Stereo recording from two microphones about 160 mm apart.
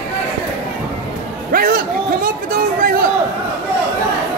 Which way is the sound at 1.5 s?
65° right (ahead or behind).